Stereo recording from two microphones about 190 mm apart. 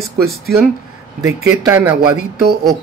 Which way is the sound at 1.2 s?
15° right (ahead or behind).